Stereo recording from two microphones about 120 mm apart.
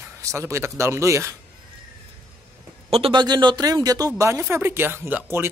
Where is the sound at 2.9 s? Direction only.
50° right (ahead or behind).